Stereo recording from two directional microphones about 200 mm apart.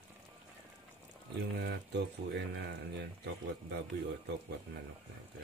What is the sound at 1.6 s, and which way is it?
Speech, 60° right (ahead or behind).